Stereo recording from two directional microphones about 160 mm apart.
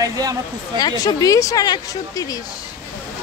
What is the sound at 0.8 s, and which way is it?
Speech, 25° left (ahead or behind).